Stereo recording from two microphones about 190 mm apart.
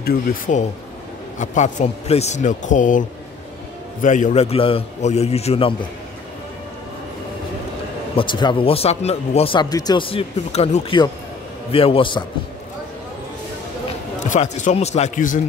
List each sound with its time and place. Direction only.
0.0 s a man's voice: 50° left (ahead or behind); by 5.8 s 30° left (ahead or behind)
8.2 s speech: 25° left (ahead or behind)
14.3 s a man's voice: 40° left (ahead or behind)